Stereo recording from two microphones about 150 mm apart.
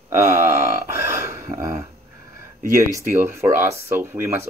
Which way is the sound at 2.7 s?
15° right (ahead or behind).